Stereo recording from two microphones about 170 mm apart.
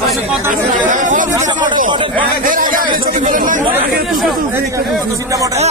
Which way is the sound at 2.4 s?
50° right (ahead or behind).